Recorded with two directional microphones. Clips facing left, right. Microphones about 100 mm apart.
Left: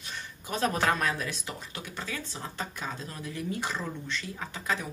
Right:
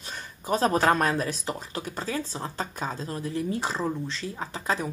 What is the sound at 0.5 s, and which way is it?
Speech, 35° right (ahead or behind).